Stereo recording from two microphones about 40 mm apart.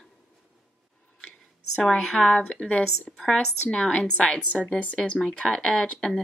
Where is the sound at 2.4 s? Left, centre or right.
Left.